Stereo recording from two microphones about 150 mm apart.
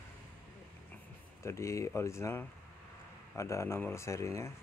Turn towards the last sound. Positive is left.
turn(degrees=20)  # may be behind; listen again after turning